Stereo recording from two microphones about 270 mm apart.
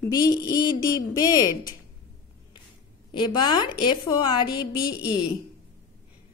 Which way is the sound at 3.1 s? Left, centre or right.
Centre.